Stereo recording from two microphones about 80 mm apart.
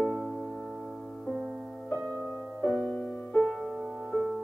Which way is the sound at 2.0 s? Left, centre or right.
Right.